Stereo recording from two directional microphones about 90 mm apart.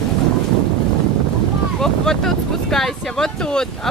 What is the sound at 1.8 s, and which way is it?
Speech, 5° left (ahead or behind).